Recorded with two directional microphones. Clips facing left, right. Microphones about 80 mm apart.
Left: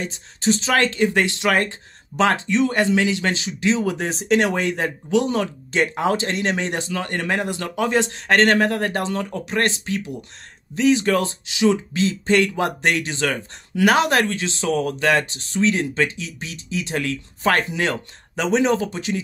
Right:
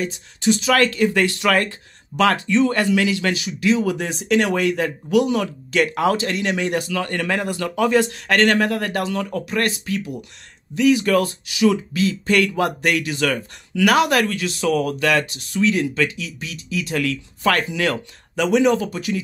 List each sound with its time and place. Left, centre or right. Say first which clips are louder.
0.0 s speech: right 2 dB; left